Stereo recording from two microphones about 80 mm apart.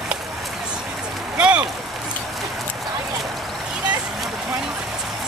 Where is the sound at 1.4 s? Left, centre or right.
Centre.